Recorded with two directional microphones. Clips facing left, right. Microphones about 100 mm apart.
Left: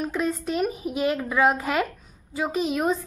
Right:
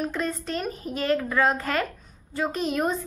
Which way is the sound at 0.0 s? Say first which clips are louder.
Left 2 dB; 5° left (ahead or behind).